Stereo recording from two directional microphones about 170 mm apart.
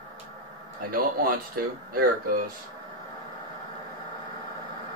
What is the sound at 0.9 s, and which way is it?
Speech, 60° right (ahead or behind).